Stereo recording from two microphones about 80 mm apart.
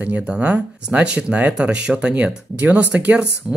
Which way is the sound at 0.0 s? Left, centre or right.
Centre.